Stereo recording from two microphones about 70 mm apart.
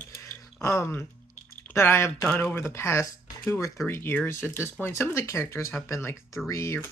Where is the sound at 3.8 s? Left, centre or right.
Left.